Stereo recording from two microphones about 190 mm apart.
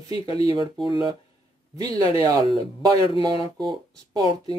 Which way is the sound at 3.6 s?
20° right (ahead or behind).